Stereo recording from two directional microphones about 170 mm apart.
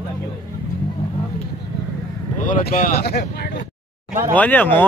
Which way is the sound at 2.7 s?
60° left (ahead or behind).